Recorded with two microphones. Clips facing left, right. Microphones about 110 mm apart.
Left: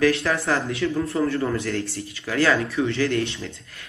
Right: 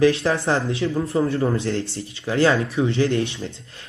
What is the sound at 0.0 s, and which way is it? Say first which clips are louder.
Speech: right 3 dB; 25° right (ahead or behind).